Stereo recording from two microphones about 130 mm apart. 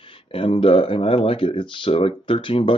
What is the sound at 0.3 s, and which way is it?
Speech, 40° left (ahead or behind).